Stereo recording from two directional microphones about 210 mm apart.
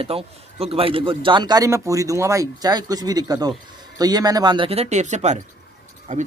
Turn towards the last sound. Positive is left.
turn(degrees=-35)  # may be behind; listen again after turning